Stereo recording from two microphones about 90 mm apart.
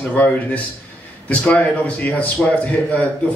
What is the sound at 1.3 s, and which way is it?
A man's voice, 15° left (ahead or behind).